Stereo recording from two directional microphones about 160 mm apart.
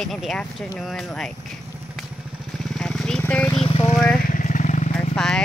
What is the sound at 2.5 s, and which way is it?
Vehicle, 5° left (ahead or behind).